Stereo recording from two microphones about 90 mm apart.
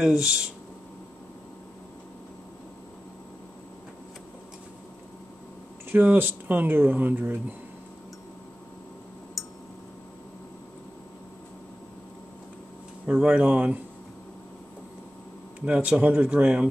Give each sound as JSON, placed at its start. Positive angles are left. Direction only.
{"t": 0.0, "sound": "speech", "side_deg": -10}
{"t": 5.9, "sound": "speech", "side_deg": -20}
{"t": 13.0, "sound": "speech", "side_deg": -15}
{"t": 15.6, "sound": "speech", "side_deg": -15}